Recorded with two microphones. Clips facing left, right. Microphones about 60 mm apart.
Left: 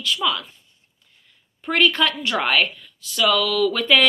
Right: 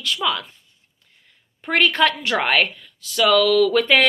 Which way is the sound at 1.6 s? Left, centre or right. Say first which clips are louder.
Right 1 dB; right.